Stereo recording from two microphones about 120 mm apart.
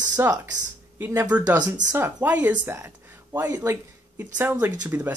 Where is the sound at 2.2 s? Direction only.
15° right (ahead or behind).